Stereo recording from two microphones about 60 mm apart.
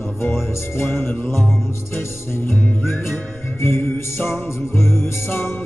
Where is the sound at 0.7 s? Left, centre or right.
Left.